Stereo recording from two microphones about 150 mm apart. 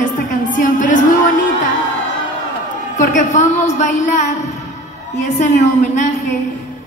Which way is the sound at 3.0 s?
55° left (ahead or behind).